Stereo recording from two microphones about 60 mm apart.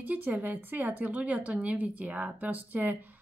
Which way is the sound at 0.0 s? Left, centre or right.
Right.